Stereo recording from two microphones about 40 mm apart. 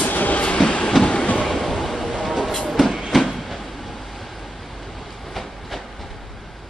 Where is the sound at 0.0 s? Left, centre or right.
Left.